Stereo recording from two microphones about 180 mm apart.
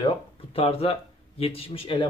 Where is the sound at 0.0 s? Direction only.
35° left (ahead or behind).